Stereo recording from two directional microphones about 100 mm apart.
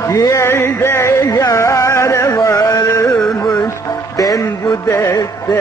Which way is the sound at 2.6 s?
35° left (ahead or behind).